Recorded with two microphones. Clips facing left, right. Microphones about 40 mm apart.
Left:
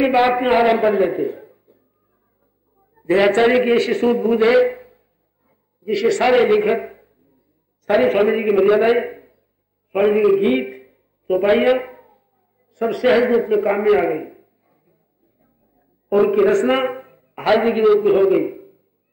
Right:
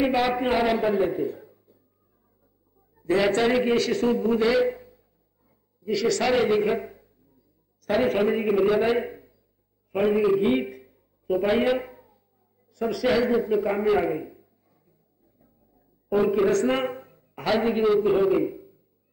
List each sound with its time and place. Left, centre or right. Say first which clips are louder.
0.0 s a man's voice: left 7 dB; left
3.0 s a man's voice: left 7 dB; left
9.9 s a sound: left 6 dB; left
16.1 s a man's voice: left 7 dB; left